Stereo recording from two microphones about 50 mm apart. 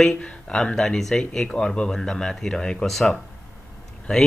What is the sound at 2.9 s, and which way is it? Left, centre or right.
Speech, centre.